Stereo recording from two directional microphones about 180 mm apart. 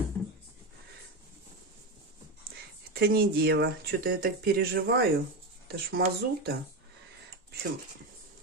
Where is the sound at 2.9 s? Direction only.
60° right (ahead or behind).